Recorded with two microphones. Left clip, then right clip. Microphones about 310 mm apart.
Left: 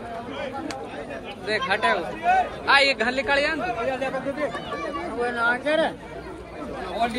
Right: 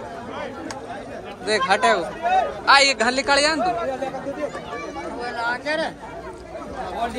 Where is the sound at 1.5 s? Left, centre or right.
Centre.